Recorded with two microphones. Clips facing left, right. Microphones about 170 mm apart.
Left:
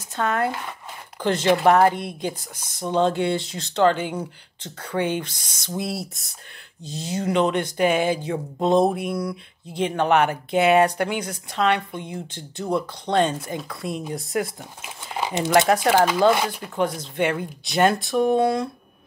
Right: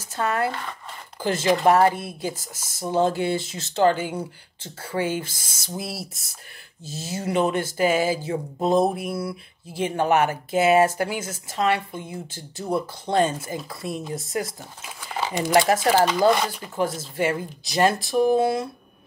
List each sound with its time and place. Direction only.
0.0 s speech: centre (ahead or behind)
0.5 s speech: 10° left (ahead or behind)
1.2 s speech: 5° right (ahead or behind)
15.1 s a sound: 20° left (ahead or behind)
15.9 s speech: 10° left (ahead or behind)
16.2 s speech: centre (ahead or behind)